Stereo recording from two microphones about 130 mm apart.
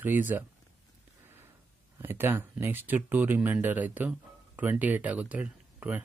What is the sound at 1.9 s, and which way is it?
Speech, 15° right (ahead or behind).